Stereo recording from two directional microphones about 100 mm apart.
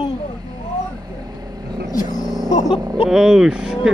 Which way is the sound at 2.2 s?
Centre (ahead or behind).